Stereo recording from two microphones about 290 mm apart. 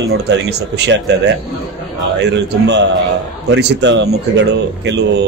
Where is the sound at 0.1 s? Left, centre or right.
Right.